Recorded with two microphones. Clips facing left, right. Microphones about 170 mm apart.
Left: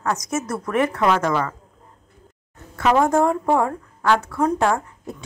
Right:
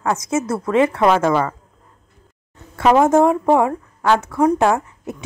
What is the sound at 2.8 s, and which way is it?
A woman's voice, 25° right (ahead or behind).